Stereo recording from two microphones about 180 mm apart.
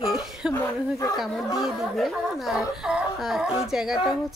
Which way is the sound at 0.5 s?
20° left (ahead or behind).